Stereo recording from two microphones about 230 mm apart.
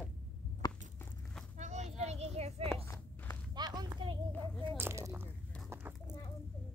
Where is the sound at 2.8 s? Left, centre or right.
Centre.